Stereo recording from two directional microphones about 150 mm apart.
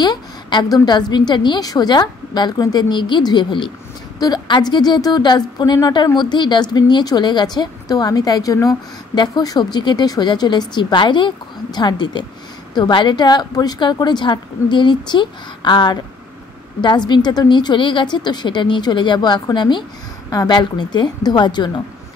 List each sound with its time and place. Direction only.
0.0 s a woman's voice: 30° left (ahead or behind)